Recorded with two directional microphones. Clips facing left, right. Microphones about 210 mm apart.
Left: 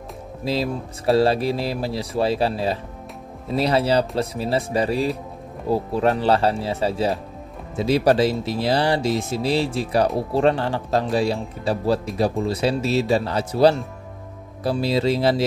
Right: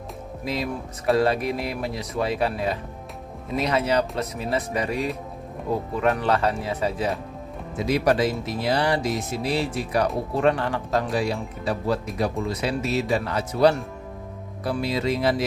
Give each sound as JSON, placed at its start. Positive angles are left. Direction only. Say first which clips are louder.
{"t": 0.5, "sound": "speech", "louder": "left 4 dB", "side_deg": 30}